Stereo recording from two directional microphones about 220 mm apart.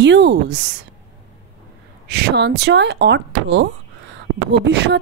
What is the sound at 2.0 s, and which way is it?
A woman's voice, 45° right (ahead or behind).